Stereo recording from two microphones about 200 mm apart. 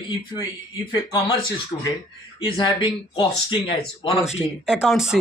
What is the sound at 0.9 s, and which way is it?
Speech, 20° left (ahead or behind).